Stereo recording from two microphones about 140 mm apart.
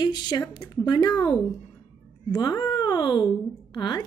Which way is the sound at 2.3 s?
30° left (ahead or behind).